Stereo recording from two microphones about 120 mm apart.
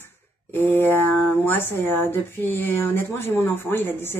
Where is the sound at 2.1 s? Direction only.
20° left (ahead or behind).